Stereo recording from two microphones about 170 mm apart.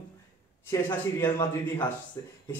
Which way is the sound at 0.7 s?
20° left (ahead or behind).